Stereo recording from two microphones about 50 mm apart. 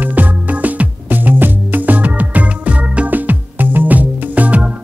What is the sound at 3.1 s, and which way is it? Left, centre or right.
Music, right.